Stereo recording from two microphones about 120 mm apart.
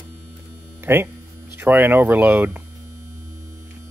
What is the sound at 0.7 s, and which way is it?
Speech, 20° right (ahead or behind).